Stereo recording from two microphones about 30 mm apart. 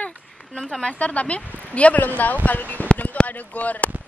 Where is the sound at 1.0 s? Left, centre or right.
Left.